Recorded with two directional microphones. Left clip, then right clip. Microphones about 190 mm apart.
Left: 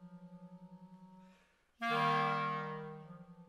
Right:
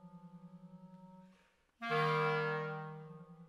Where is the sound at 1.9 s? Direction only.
15° right (ahead or behind).